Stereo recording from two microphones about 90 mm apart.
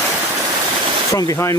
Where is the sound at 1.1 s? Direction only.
40° left (ahead or behind).